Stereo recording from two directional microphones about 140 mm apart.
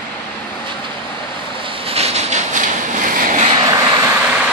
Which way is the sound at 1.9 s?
50° right (ahead or behind).